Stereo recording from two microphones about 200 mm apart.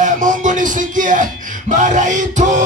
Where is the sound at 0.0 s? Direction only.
40° right (ahead or behind).